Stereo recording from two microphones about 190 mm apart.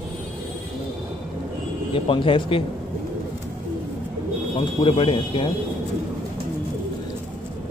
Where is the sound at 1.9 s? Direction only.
30° left (ahead or behind).